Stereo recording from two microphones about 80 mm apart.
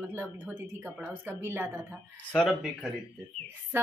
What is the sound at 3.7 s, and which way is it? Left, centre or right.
Speech, right.